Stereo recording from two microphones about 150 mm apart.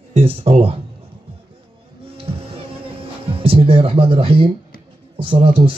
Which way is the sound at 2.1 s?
40° right (ahead or behind).